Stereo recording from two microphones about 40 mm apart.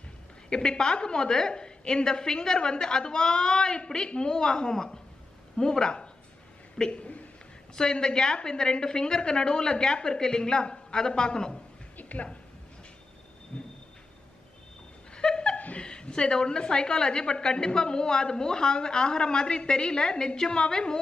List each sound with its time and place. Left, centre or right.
0.5 s a woman's voice: left
7.7 s a woman's voice: centre
12.0 s a sound: left
13.5 s a sound: left
15.1 s chuckle: centre
15.5 s chuckle: left
15.8 s a woman's voice: left